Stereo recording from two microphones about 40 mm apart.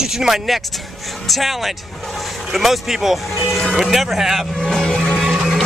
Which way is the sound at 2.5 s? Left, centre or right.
Centre.